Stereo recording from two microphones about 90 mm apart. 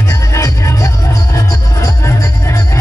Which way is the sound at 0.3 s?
35° left (ahead or behind).